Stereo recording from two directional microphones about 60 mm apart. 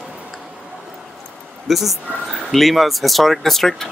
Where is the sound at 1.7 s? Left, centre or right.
Centre.